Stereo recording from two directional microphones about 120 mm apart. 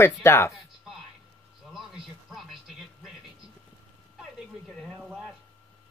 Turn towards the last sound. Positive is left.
turn(degrees=0)  # may be behind; listen again after turning